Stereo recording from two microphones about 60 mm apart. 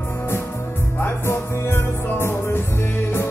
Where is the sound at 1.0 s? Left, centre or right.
Left.